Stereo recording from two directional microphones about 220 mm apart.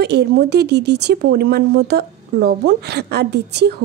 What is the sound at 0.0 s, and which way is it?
Speech, 50° right (ahead or behind).